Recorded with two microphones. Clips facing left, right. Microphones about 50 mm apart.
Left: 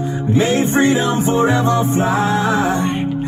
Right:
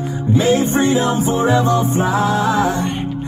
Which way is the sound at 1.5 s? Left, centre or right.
Left.